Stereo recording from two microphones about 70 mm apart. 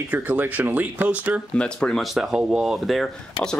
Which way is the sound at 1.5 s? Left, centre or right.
Centre.